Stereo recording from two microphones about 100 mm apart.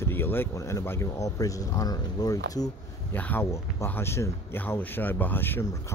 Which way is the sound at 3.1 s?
15° left (ahead or behind).